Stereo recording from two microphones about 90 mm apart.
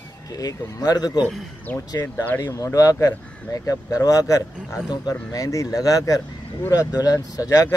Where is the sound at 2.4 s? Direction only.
40° left (ahead or behind).